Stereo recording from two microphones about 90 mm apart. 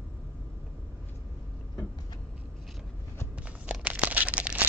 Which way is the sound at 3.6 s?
15° right (ahead or behind).